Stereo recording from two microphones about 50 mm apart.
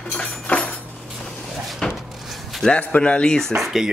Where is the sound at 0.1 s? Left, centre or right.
Left.